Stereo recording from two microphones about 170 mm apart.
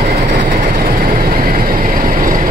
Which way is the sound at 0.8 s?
55° right (ahead or behind).